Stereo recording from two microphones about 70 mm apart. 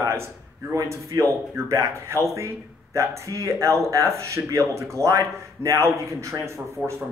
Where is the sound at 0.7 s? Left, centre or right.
Right.